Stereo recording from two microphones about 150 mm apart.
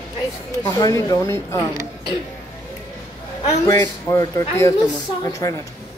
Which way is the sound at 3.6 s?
20° left (ahead or behind).